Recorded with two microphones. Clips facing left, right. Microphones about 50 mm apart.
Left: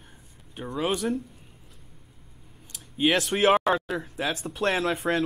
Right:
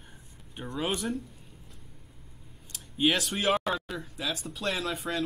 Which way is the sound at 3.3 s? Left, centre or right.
Left.